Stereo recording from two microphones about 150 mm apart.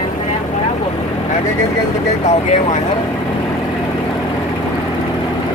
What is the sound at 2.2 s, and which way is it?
Speech, 50° left (ahead or behind).